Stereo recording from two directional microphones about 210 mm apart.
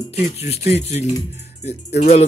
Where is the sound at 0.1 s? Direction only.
30° left (ahead or behind).